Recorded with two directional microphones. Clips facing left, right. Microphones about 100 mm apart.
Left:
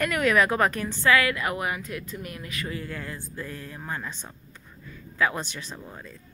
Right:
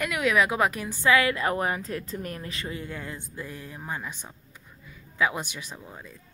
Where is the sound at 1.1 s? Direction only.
25° right (ahead or behind); by 6.1 s 5° right (ahead or behind).